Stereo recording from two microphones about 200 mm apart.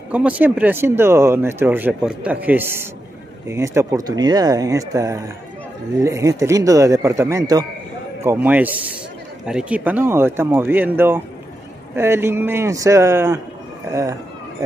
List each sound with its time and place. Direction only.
0.1 s speech: 5° right (ahead or behind)